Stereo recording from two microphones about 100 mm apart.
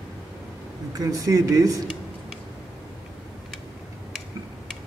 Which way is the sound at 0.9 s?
35° right (ahead or behind).